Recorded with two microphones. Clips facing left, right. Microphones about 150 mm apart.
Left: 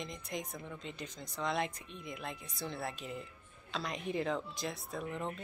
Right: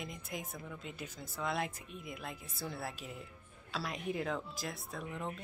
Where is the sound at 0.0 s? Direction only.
5° right (ahead or behind).